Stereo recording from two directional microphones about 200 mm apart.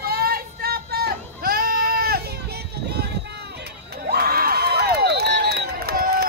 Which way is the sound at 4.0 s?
50° right (ahead or behind).